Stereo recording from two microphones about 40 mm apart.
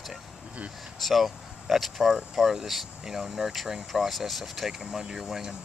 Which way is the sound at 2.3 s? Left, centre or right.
Centre.